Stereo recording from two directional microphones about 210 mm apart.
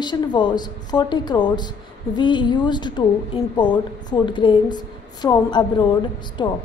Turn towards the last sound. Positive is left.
turn(degrees=20)  # may be behind; listen again after turning